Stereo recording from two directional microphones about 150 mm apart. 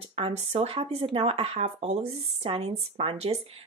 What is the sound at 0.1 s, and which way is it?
Speech, 40° right (ahead or behind).